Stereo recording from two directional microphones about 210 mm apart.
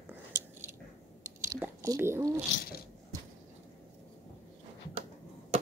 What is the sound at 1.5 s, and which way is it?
Whispering, 15° right (ahead or behind).